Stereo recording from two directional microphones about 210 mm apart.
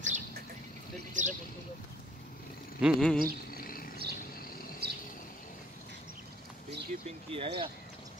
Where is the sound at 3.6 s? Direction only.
45° left (ahead or behind).